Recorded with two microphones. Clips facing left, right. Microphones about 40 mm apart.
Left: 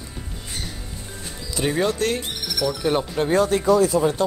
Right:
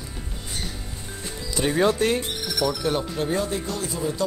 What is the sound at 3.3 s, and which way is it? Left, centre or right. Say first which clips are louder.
Speech: left 8 dB; left.